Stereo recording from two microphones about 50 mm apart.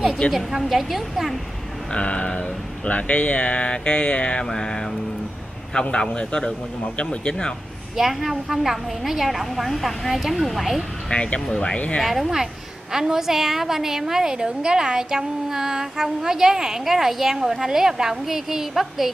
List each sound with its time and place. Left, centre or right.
0.3 s a woman's voice: centre
1.9 s mantra: left
7.0 s speech: centre
7.9 s a woman's voice: centre
11.1 s mantra: left
11.5 s speech: centre
12.0 s a woman's voice: centre